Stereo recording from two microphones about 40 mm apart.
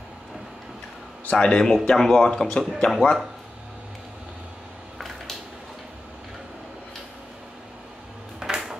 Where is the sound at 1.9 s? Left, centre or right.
Centre.